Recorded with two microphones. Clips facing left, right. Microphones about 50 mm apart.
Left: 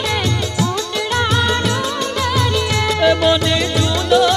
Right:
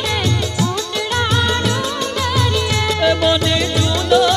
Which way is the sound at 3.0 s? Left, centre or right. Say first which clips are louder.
Left 2 dB; left.